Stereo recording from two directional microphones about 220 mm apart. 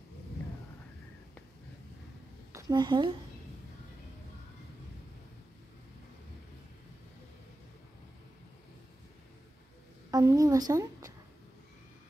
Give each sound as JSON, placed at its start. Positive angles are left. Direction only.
{"t": 2.5, "sound": "a woman's voice", "side_deg": -20}
{"t": 10.1, "sound": "a woman's voice", "side_deg": -15}